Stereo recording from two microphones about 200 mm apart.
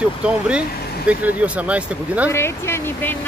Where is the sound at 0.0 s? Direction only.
5° right (ahead or behind).